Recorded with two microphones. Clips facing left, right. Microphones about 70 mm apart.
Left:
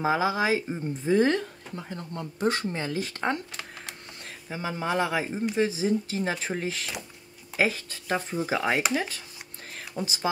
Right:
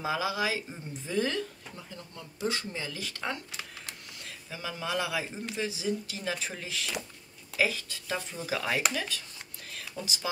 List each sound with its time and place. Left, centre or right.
0.0 s speech: left
4.5 s speech: left